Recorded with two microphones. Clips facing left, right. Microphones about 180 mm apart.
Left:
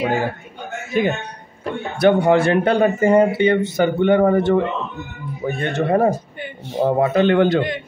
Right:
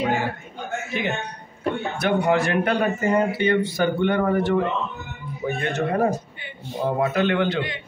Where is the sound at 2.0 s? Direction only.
30° left (ahead or behind).